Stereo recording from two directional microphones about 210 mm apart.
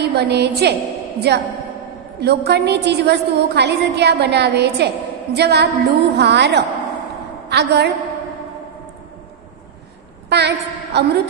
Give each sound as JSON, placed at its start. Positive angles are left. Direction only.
{"t": 0.0, "sound": "a woman's voice", "side_deg": -50}
{"t": 10.3, "sound": "a woman's voice", "side_deg": -50}